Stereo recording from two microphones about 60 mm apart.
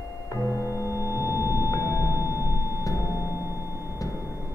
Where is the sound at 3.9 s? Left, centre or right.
Left.